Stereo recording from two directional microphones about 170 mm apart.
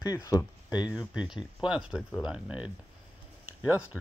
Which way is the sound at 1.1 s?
5° right (ahead or behind).